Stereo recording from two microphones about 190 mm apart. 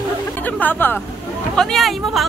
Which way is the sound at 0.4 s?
10° left (ahead or behind).